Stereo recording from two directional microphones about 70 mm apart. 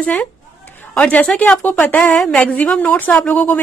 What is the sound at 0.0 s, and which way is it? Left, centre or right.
A woman's voice, centre.